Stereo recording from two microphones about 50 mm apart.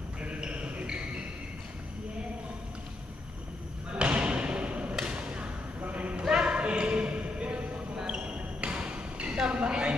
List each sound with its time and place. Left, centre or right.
0.2 s music: right
3.9 s basketball bounce: right
4.9 s thump: centre
5.8 s a sound: right